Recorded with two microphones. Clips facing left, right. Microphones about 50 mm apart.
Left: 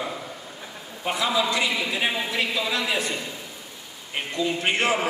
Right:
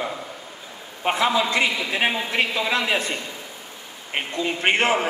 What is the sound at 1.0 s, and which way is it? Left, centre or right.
Speech, right.